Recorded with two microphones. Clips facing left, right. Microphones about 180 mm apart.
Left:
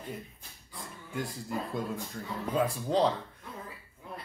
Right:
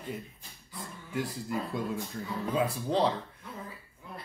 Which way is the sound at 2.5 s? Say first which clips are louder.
Left 1 dB; centre (ahead or behind).